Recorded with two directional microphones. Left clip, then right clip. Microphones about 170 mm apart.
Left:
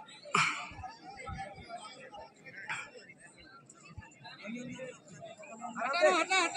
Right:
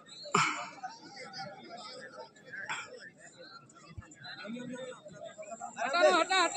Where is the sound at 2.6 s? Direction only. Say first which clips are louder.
Even; 5° right (ahead or behind).